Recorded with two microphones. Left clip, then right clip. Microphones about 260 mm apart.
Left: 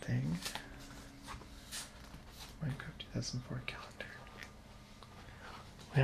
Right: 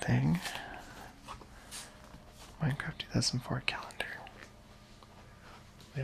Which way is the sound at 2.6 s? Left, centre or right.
Right.